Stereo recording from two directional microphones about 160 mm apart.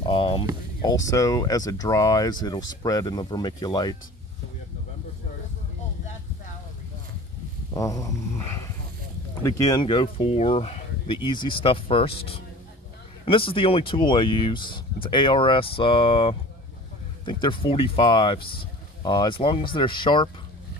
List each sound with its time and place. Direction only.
0.0 s a sound: 30° left (ahead or behind)
0.8 s speech: 20° left (ahead or behind)
7.7 s snoring: 20° left (ahead or behind)
9.4 s speech: 20° left (ahead or behind)